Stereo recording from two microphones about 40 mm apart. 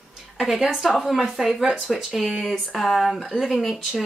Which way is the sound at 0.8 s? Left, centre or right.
Centre.